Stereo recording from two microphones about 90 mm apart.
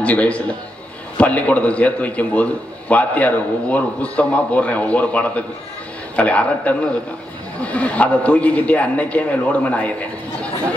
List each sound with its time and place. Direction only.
0.0 s a man's voice: 15° left (ahead or behind)